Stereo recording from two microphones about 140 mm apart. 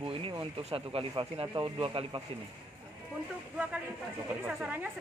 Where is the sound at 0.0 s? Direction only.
40° right (ahead or behind).